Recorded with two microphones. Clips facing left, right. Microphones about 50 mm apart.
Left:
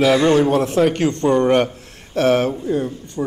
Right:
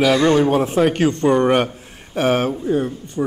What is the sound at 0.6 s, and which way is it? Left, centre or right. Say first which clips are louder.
A man's voice: even; centre.